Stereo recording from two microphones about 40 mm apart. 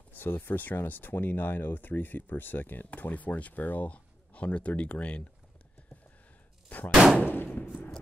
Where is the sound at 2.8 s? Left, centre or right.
Left.